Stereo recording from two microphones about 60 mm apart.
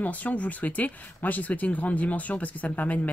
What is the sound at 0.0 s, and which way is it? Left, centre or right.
Speech, left.